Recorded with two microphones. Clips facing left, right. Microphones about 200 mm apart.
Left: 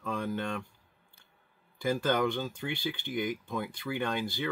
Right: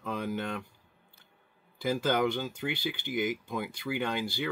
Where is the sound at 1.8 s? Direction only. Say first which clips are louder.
Even; 10° right (ahead or behind).